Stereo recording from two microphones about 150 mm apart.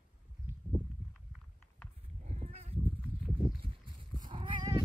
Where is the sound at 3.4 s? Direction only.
35° right (ahead or behind).